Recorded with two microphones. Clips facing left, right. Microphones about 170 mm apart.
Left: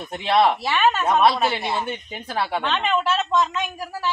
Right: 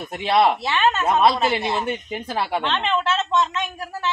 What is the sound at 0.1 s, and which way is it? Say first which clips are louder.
Speech: even; 5° right (ahead or behind).